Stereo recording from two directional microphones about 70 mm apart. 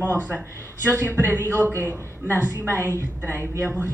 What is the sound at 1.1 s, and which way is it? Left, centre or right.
A woman's voice, right.